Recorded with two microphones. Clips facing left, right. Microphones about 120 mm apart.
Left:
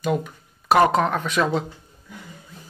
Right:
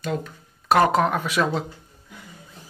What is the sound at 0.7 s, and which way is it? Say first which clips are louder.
Speech: left 1 dB; centre (ahead or behind).